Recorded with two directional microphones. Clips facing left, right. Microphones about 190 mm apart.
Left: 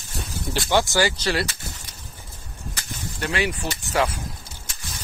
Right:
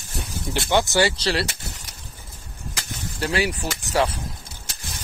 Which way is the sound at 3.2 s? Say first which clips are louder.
Right 2 dB; 35° right (ahead or behind).